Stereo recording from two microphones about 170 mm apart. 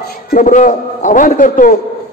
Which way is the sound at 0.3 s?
50° left (ahead or behind).